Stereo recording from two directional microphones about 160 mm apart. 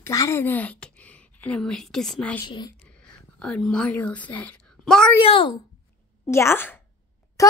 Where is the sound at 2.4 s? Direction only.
25° left (ahead or behind).